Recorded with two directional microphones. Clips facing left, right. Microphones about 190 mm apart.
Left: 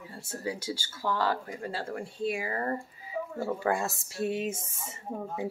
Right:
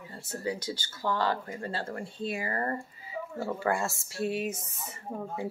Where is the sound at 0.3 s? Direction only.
10° left (ahead or behind).